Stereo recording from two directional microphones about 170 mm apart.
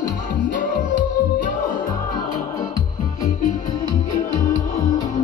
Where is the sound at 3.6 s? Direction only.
25° left (ahead or behind).